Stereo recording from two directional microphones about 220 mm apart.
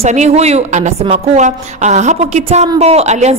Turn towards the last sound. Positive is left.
turn(degrees=-30)  # may be behind; listen again after turning